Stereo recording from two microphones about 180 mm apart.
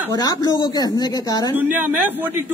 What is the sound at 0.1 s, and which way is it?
A woman's voice, 20° left (ahead or behind).